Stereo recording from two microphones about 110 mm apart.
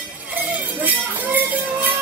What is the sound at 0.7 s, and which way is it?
Music, 15° right (ahead or behind).